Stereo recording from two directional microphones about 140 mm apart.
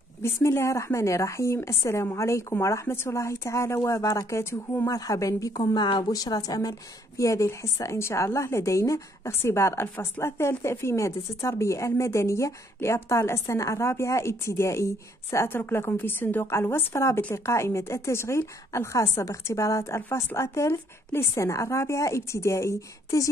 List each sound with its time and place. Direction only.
0.2 s a woman's voice: 20° left (ahead or behind)